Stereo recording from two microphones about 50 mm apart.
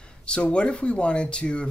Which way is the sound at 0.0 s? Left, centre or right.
Centre.